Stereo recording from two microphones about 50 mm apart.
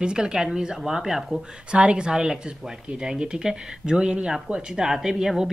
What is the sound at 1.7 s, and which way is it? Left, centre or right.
Speech, right.